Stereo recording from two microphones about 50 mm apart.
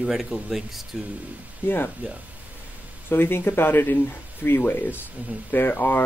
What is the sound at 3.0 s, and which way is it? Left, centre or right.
Speech, left.